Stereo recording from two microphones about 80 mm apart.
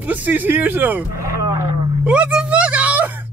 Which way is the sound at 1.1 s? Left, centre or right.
Right.